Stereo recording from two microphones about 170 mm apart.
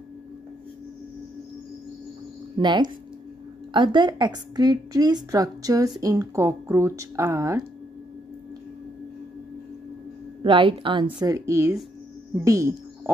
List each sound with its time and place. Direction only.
2.5 s a woman's voice: 25° right (ahead or behind)
10.4 s a woman's voice: 30° right (ahead or behind)